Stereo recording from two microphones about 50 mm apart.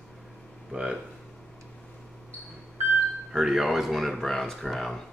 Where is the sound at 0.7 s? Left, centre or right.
Centre.